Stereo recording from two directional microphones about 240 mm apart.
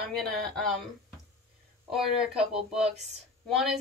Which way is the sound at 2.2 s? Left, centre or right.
Centre.